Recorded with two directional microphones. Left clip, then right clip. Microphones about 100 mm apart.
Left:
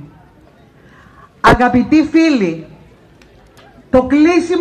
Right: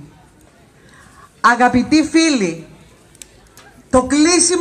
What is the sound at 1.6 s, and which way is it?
Speech, 65° right (ahead or behind).